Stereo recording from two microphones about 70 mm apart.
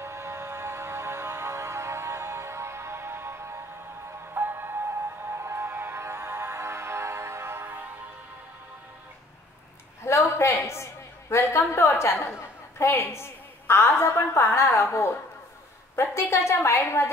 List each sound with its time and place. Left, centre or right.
0.0 s music: right
10.0 s a sound: left
16.0 s a woman's voice: left